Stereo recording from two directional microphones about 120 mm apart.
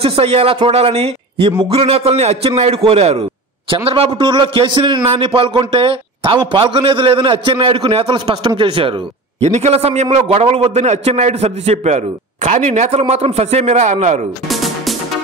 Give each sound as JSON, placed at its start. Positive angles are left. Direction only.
{"t": 0.0, "sound": "a man's voice", "side_deg": -55}
{"t": 9.5, "sound": "a man's voice", "side_deg": -65}
{"t": 14.5, "sound": "music", "side_deg": 0}